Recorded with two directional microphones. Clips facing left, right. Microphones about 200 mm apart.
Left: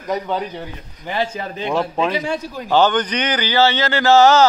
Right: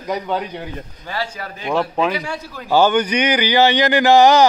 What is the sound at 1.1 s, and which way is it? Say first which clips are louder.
Speech: left 4 dB; 20° left (ahead or behind).